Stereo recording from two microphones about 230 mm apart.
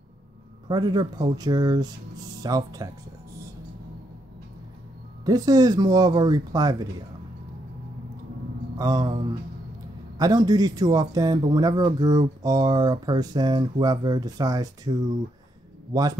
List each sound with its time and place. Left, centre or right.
0.7 s a man's voice: centre
5.2 s a man's voice: centre
8.7 s a man's voice: centre
15.9 s a man's voice: centre